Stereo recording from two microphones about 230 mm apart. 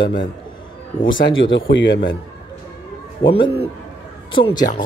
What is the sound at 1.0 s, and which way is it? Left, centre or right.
Speech, left.